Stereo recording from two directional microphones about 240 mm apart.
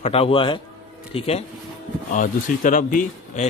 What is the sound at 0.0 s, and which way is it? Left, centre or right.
Speech, left.